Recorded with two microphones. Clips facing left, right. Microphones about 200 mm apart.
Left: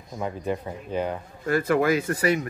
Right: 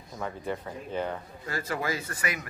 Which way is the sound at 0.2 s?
15° left (ahead or behind).